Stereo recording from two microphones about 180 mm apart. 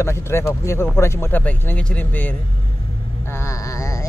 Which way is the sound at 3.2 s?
15° left (ahead or behind).